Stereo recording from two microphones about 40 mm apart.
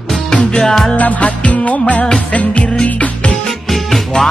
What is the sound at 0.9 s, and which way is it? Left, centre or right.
Music, left.